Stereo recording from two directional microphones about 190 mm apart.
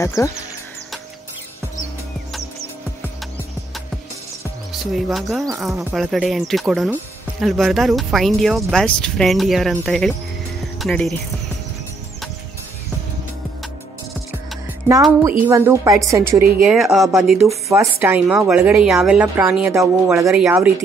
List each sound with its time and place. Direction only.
0.0 s speech: 15° left (ahead or behind)
4.9 s speech: centre (ahead or behind)
15.4 s speech: 15° right (ahead or behind)
16.6 s speech: centre (ahead or behind)
17.5 s speech: 15° right (ahead or behind)